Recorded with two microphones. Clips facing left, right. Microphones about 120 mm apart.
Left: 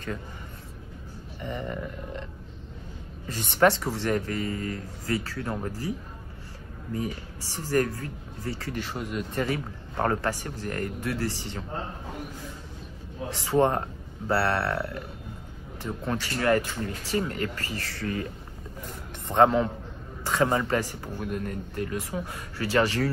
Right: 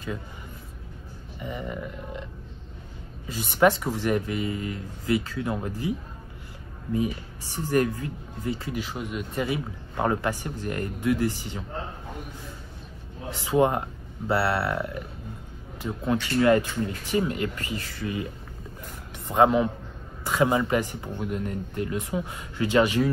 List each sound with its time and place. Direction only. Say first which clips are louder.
1.4 s a sound: even; 5° right (ahead or behind)
3.3 s a man's voice: right 1 dB; 10° right (ahead or behind)
8.7 s a man's voice: even; centre (ahead or behind)
13.3 s a man's voice: right 1 dB; 15° right (ahead or behind)